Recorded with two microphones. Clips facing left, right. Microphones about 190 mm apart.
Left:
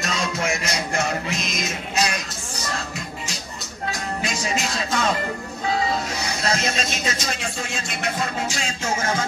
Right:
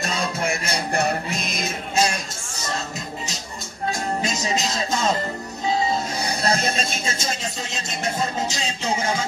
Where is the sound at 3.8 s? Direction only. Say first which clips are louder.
Right 3 dB; 25° right (ahead or behind).